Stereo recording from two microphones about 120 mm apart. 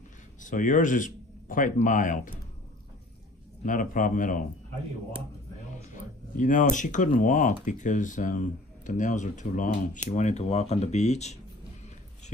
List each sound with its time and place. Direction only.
0.4 s speech: 90° left
3.6 s speech: 90° left
5.9 s speech: 90° left; by 11.3 s 65° left (ahead or behind)